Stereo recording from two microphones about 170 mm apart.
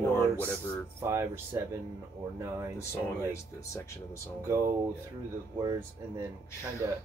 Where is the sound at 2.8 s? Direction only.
15° left (ahead or behind).